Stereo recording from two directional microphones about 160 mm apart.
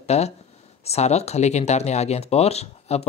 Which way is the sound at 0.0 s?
40° left (ahead or behind).